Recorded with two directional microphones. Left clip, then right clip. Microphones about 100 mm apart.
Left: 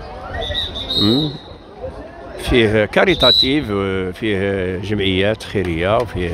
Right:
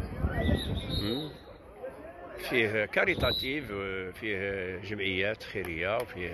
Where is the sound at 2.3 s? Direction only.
55° left (ahead or behind).